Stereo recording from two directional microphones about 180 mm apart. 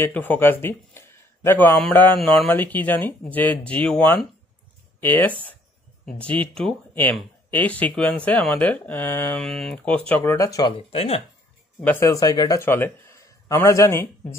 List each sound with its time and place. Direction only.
0.0 s speech: 10° left (ahead or behind)
10.9 s speech: 35° left (ahead or behind)
11.8 s a man's voice: 15° left (ahead or behind)